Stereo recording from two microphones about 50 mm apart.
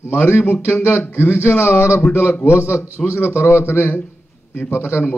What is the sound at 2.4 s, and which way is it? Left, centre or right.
Speech, left.